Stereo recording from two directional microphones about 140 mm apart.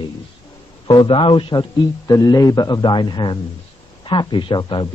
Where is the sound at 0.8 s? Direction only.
35° left (ahead or behind).